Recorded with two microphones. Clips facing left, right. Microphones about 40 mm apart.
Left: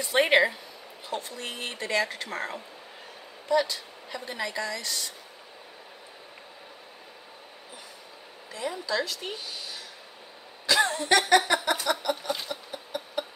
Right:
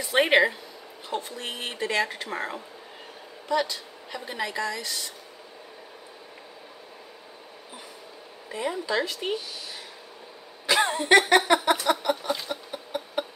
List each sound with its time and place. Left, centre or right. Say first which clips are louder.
0.0 s a woman's voice: right 1 dB; centre
8.5 s speech: right 3 dB; right
10.7 s speech: right 3 dB; right
12.0 s chicken: right 3 dB; right
12.3 s a sound: right 2 dB; centre